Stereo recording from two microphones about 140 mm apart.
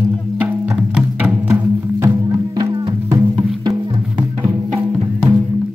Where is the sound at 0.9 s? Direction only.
15° right (ahead or behind).